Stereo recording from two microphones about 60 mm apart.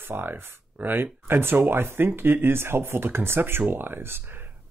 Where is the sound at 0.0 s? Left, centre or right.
Right.